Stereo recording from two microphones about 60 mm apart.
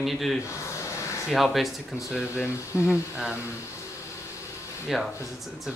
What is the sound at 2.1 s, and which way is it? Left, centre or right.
Speech, centre.